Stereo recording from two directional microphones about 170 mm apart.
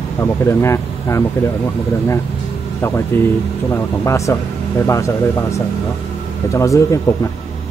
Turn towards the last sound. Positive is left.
turn(degrees=20)  # may be behind; listen again after turning